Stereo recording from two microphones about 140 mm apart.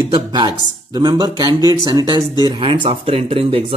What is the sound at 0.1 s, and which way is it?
Speech, 30° right (ahead or behind).